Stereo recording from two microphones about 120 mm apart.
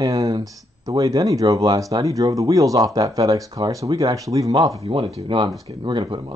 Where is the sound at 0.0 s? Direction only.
30° right (ahead or behind).